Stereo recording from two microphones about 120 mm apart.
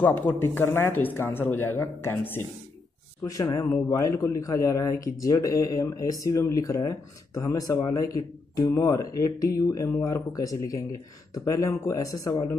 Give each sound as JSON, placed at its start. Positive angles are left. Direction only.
{"t": 0.0, "sound": "a man's voice", "side_deg": 15}